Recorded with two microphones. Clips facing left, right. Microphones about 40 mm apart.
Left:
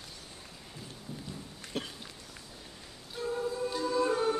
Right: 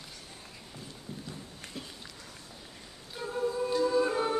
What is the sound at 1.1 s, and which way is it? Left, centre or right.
Run, right.